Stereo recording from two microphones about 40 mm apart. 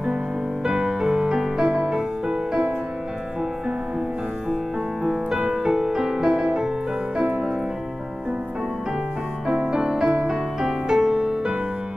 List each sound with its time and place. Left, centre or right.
0.7 s music: centre
5.0 s music: centre
7.2 s music: right
9.6 s music: right
10.3 s music: centre